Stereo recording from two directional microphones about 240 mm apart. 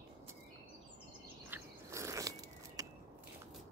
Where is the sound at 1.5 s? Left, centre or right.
Centre.